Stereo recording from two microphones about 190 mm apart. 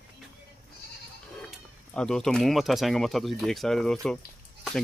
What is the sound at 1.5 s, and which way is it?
Speech, 5° left (ahead or behind).